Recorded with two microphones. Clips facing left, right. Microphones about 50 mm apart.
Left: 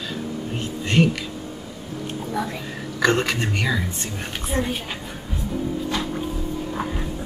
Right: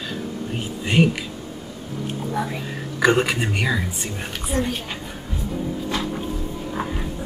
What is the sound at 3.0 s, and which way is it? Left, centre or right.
Speech, centre.